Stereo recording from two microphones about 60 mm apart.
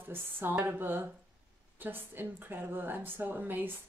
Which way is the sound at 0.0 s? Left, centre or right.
Right.